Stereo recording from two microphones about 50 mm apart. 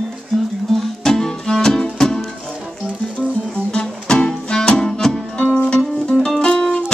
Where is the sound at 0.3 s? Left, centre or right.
Centre.